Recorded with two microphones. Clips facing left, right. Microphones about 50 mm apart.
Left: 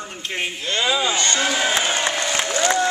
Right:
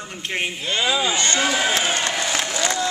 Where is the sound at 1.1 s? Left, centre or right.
Right.